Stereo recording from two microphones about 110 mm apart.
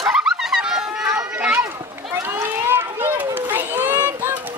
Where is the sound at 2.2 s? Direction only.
20° right (ahead or behind).